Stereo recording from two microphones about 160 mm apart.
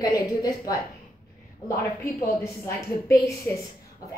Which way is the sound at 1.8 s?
20° left (ahead or behind).